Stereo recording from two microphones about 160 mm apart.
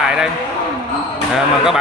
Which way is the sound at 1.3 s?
5° right (ahead or behind).